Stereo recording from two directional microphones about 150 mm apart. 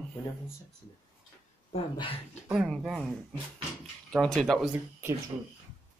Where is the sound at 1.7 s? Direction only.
35° left (ahead or behind).